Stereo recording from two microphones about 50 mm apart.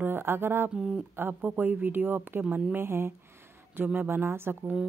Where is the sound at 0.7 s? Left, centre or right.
Centre.